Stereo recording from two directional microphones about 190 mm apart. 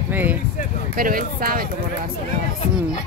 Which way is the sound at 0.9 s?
50° right (ahead or behind).